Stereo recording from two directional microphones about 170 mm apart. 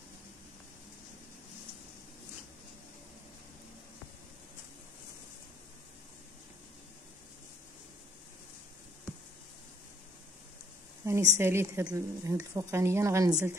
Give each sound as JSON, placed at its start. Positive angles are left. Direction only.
{"t": 11.3, "sound": "a woman's voice", "side_deg": -15}